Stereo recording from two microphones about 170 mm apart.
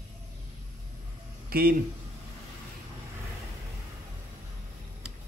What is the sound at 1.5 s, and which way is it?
Speech, 60° right (ahead or behind).